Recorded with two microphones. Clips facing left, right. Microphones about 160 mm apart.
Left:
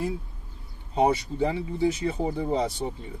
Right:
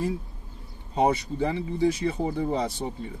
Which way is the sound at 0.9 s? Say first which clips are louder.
Left 1 dB; 20° left (ahead or behind).